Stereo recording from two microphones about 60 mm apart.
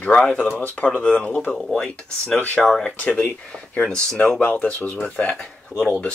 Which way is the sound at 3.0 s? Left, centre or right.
Left.